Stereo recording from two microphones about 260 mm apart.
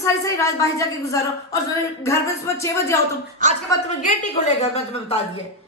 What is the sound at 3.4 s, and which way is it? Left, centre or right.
Speech, right.